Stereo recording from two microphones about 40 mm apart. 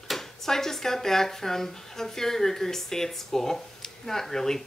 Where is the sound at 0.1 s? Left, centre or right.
Centre.